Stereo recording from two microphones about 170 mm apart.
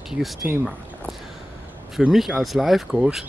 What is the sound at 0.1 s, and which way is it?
Speech, 5° right (ahead or behind).